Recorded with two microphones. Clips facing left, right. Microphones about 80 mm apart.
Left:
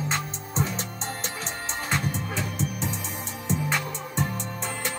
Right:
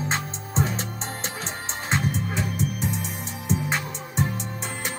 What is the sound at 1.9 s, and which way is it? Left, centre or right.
Music, centre.